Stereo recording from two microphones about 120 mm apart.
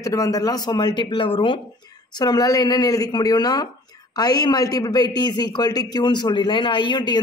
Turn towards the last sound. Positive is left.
turn(degrees=40)  # may be behind; listen again after turning